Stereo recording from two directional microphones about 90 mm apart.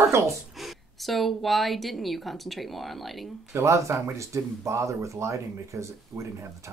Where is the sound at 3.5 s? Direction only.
35° right (ahead or behind).